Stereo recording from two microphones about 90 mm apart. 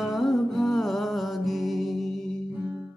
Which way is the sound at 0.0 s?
Centre (ahead or behind).